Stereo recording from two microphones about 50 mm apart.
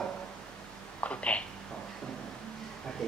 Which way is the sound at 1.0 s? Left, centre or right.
Left.